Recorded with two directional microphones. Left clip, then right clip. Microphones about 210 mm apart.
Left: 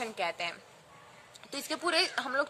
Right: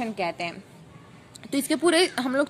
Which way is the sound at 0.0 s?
15° right (ahead or behind).